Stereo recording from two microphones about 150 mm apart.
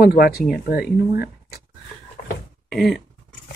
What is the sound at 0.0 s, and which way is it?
Speech, 90° left.